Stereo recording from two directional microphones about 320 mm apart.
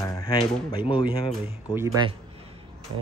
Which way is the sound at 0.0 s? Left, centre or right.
Centre.